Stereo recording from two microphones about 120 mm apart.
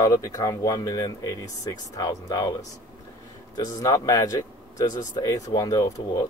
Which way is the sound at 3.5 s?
30° left (ahead or behind).